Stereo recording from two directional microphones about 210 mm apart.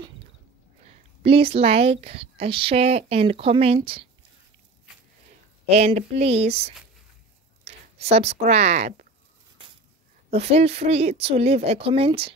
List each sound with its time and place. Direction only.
0.8 s speech: 25° right (ahead or behind)
5.7 s speech: 30° right (ahead or behind)
10.3 s speech: 30° right (ahead or behind)